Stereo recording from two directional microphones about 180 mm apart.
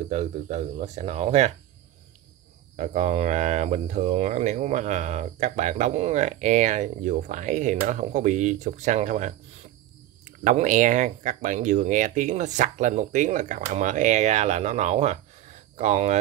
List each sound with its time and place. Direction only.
0.1 s speech: 35° right (ahead or behind)
2.7 s speech: 45° right (ahead or behind)